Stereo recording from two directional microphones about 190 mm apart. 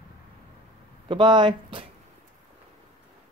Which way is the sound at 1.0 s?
25° right (ahead or behind).